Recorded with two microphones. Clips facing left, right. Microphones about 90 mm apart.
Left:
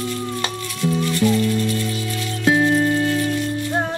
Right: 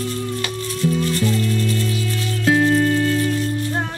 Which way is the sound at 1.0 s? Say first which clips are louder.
Left 2 dB; 35° right (ahead or behind).